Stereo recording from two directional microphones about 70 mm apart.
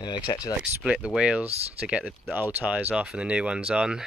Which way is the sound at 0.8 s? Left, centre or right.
Centre.